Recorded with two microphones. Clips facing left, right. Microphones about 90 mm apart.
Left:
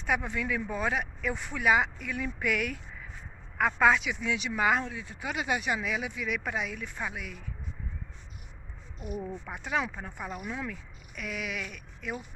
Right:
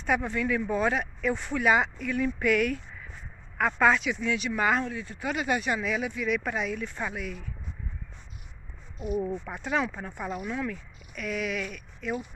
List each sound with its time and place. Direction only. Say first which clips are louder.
0.0 s speech: right 3 dB; 10° left (ahead or behind)
9.0 s speech: right 7 dB; 20° right (ahead or behind)
9.5 s speech: left 2 dB; 5° left (ahead or behind)